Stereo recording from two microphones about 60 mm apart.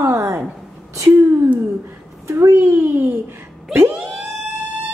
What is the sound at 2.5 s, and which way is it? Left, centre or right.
Speech, right.